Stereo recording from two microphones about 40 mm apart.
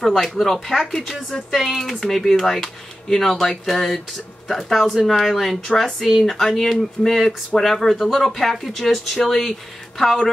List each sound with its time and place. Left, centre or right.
0.0 s speech: centre